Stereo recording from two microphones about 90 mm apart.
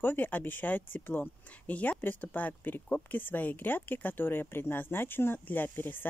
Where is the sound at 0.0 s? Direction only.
20° left (ahead or behind).